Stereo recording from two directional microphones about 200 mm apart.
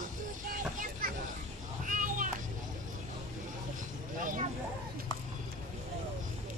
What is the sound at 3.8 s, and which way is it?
Vehicle, 40° right (ahead or behind).